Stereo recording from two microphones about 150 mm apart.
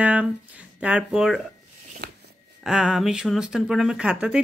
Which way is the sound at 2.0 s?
90° right.